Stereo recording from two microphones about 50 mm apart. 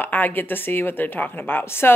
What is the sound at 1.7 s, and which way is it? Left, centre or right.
Speech, left.